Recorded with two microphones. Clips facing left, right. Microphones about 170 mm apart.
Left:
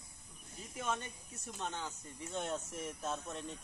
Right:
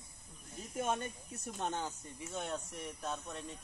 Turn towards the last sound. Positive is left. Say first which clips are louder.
# left 1 dB
turn(degrees=0)  # may be behind; listen again after turning